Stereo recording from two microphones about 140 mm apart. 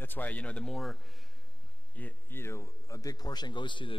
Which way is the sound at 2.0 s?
15° left (ahead or behind).